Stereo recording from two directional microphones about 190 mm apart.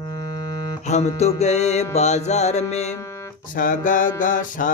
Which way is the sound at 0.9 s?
35° left (ahead or behind).